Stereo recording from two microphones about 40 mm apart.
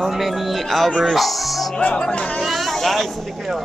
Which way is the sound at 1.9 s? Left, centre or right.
Left.